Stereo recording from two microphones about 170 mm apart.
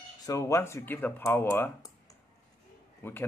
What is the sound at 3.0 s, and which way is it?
Speech, 10° left (ahead or behind).